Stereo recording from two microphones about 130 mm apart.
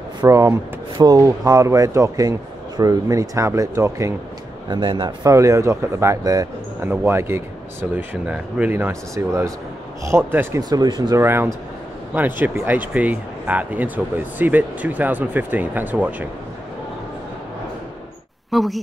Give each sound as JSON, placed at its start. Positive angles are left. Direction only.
{"t": 0.3, "sound": "speech", "side_deg": -20}
{"t": 4.6, "sound": "speech", "side_deg": -40}
{"t": 5.3, "sound": "speech", "side_deg": -25}
{"t": 10.6, "sound": "speech", "side_deg": -30}
{"t": 11.2, "sound": "speech", "side_deg": -20}
{"t": 18.5, "sound": "a woman's voice", "side_deg": 0}